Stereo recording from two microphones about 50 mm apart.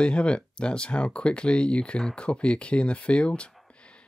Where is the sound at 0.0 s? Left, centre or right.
Left.